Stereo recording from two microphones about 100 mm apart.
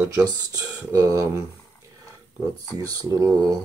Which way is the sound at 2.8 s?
35° right (ahead or behind).